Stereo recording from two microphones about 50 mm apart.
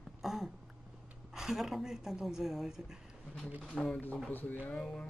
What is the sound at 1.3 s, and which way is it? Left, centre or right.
A woman's voice, centre.